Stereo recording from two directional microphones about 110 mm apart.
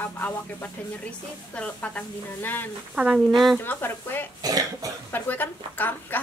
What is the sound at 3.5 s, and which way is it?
Speech, 20° left (ahead or behind).